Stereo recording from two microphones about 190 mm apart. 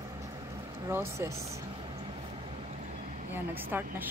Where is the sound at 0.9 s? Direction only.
15° right (ahead or behind).